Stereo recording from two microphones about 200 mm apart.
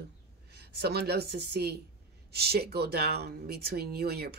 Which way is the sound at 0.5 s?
55° right (ahead or behind).